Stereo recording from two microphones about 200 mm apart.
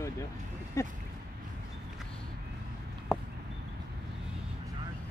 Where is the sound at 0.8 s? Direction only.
15° left (ahead or behind).